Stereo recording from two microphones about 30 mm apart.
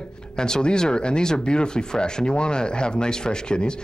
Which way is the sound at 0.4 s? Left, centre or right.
Left.